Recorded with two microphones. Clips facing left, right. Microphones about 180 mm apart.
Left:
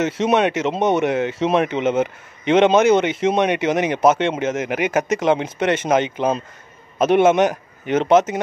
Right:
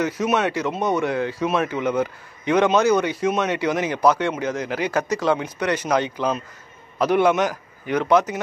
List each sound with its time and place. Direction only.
0.0 s a man's voice: 25° left (ahead or behind)